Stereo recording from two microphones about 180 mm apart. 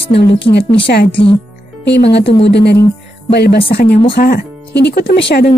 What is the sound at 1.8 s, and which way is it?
A woman's voice, 70° left (ahead or behind).